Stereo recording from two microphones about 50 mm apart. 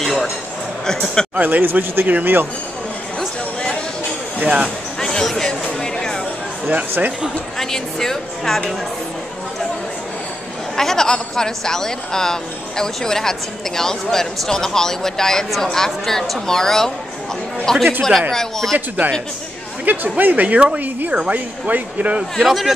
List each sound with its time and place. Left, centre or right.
0.0 s a sound: centre
0.8 s speech: centre
1.3 s a woman's voice: right
4.4 s speech: right
5.0 s a sound: centre
7.0 s a woman's voice: right
7.5 s speech: centre
10.8 s speech: centre
19.8 s a woman's voice: right
22.4 s a man's voice: centre